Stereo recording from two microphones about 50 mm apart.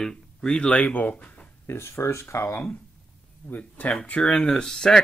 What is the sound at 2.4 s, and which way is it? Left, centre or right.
Speech, left.